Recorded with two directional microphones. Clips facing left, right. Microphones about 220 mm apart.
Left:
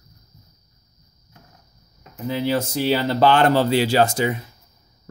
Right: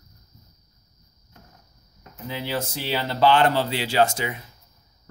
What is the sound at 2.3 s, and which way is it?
Speech, 45° left (ahead or behind).